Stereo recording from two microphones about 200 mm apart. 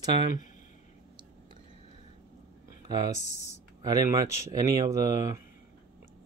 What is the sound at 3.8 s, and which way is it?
Speech, 20° right (ahead or behind).